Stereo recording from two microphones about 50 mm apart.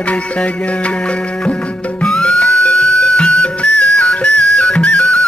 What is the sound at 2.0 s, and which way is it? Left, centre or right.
Music, left.